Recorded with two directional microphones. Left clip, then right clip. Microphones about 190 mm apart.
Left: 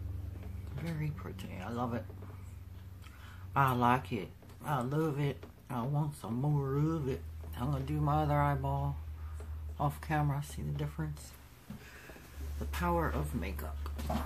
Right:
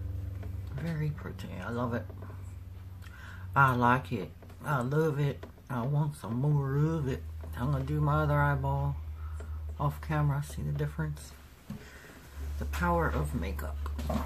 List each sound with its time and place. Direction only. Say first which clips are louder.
0.8 s speech: right 3 dB; 5° right (ahead or behind)
3.5 s speech: right 4 dB; centre (ahead or behind)
12.8 s speech: right 4 dB; centre (ahead or behind)